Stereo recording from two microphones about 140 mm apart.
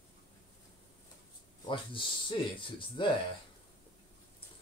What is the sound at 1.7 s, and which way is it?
Speech, 35° left (ahead or behind).